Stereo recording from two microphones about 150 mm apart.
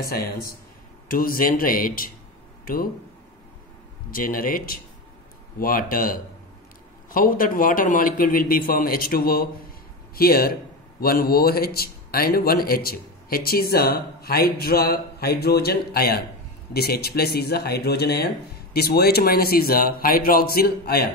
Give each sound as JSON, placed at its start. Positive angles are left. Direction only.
{"t": 0.0, "sound": "a man's voice", "side_deg": 90}
{"t": 1.0, "sound": "a man's voice", "side_deg": 70}
{"t": 4.1, "sound": "a man's voice", "side_deg": 70}